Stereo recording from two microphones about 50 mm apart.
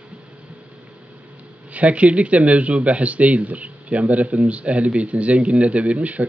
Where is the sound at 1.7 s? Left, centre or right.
Right.